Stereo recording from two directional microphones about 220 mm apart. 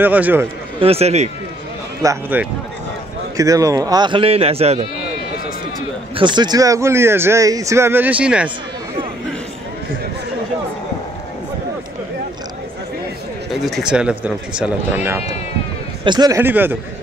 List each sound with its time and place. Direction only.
0.0 s a man's voice: 10° right (ahead or behind)
0.7 s a man's voice: 25° right (ahead or behind)
2.0 s a man's voice: 10° right (ahead or behind); by 4.8 s 25° right (ahead or behind)
6.1 s a man's voice: 20° right (ahead or behind)
13.7 s speech: centre (ahead or behind)
16.0 s a man's voice: 20° right (ahead or behind)